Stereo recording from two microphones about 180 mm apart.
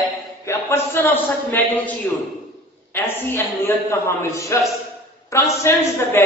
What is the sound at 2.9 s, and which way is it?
A woman's voice, 15° left (ahead or behind).